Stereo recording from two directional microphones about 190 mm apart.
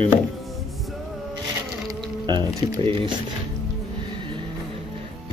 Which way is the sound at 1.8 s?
25° right (ahead or behind).